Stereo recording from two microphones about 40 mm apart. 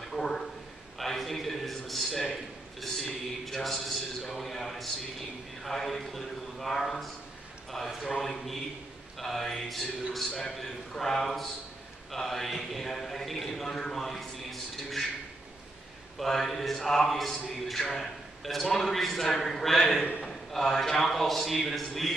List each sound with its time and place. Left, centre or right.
0.1 s a sound: centre
16.2 s a man's voice: centre
20.0 s a man's voice: left
20.2 s a man's voice: centre